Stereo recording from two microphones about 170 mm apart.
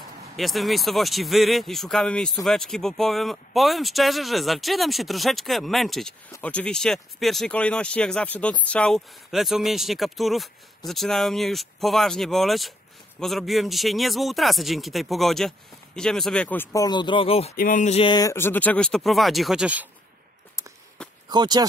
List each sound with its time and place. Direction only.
0.4 s speech: centre (ahead or behind)
16.7 s speech: 25° left (ahead or behind)
17.6 s a sound: 50° left (ahead or behind)
18.0 s speech: 20° left (ahead or behind); by 19.9 s 5° right (ahead or behind)
21.3 s speech: 25° right (ahead or behind)